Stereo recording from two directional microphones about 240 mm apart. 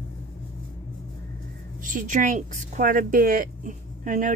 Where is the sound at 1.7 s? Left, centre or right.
Right.